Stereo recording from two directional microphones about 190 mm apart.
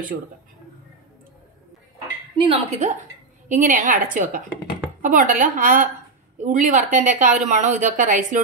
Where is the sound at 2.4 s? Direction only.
35° right (ahead or behind).